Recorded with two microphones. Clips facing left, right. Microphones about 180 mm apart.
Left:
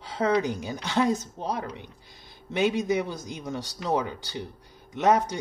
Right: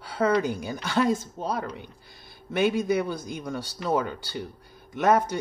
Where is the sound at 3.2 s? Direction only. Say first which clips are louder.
Right 1 dB; 20° left (ahead or behind).